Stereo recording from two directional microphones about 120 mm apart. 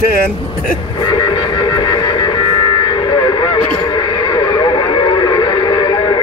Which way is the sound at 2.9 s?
45° left (ahead or behind).